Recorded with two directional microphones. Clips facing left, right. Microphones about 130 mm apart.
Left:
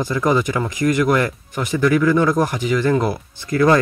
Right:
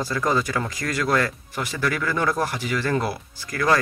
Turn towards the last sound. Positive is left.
turn(degrees=25)  # may be behind; listen again after turning